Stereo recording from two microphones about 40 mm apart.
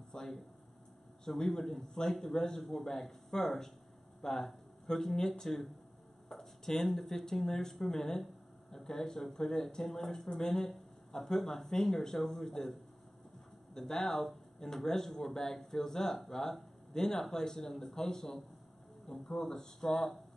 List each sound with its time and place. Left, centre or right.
0.1 s a sound: centre
1.2 s speech: centre
13.7 s speech: centre